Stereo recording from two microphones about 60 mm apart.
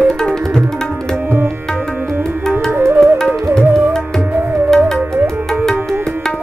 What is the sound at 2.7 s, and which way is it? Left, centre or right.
Flute, right.